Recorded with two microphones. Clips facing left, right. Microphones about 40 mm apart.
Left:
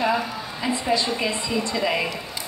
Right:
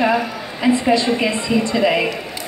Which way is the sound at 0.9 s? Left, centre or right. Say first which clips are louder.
Right 6 dB; right.